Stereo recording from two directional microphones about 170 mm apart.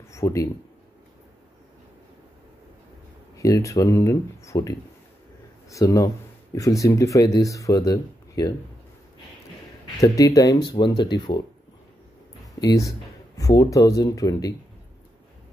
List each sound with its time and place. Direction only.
0.1 s speech: 20° left (ahead or behind)
3.3 s speech: 20° left (ahead or behind)
9.9 s speech: 20° left (ahead or behind)
12.5 s speech: 20° left (ahead or behind)